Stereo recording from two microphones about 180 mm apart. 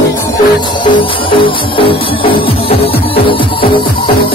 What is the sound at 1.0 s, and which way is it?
Music, 30° left (ahead or behind).